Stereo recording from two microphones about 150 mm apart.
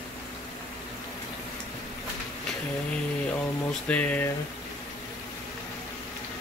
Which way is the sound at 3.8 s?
10° left (ahead or behind).